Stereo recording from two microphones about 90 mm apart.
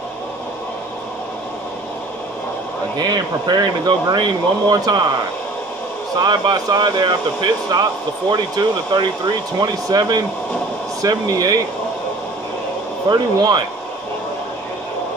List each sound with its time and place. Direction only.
3.0 s speech: 50° right (ahead or behind)
6.1 s speech: 50° right (ahead or behind)
13.1 s speech: 50° right (ahead or behind)